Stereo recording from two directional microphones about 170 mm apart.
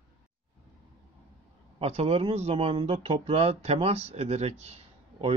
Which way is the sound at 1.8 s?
35° right (ahead or behind).